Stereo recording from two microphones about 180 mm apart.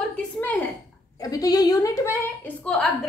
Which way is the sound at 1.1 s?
20° left (ahead or behind).